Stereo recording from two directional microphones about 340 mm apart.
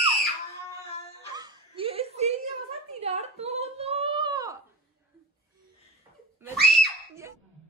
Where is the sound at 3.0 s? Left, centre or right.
Centre.